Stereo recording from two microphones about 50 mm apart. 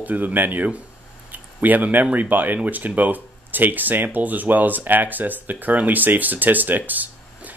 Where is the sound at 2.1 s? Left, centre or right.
Right.